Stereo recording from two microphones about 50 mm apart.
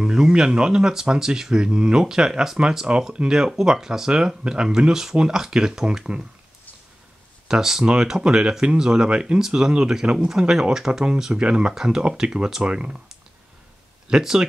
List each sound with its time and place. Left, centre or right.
0.0 s speech: centre
7.4 s speech: centre
14.0 s speech: centre